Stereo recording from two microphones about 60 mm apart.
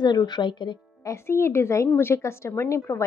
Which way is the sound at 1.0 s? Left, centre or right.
Left.